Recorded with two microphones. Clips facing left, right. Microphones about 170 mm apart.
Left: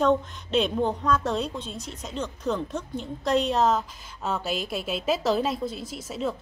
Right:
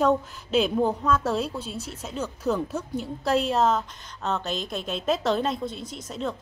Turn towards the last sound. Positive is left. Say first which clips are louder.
# left 1 dB
turn(degrees=5)  # may be behind; listen again after turning